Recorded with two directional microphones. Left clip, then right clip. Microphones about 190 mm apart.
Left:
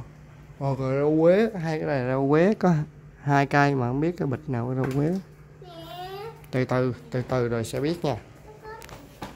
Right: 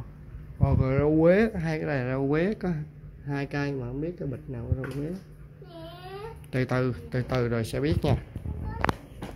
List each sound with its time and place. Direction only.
0.6 s speech: 10° left (ahead or behind); by 2.8 s 30° left (ahead or behind)
3.3 s speech: 40° left (ahead or behind)
6.5 s speech: 15° left (ahead or behind)